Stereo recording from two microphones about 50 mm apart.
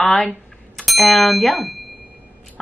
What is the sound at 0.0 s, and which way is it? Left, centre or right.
Speech, centre.